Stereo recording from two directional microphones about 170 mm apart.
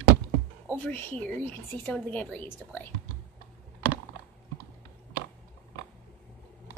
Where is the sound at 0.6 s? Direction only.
10° left (ahead or behind).